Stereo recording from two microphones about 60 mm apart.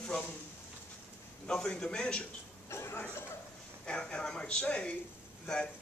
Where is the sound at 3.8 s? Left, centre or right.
Centre.